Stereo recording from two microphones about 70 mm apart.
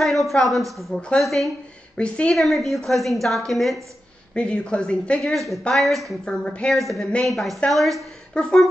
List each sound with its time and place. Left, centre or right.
0.0 s a woman's voice: centre
2.0 s speech: centre
2.3 s a woman's voice: centre
4.3 s speech: centre
5.2 s a woman's voice: centre
6.2 s speech: centre
6.7 s a woman's voice: centre
8.3 s speech: centre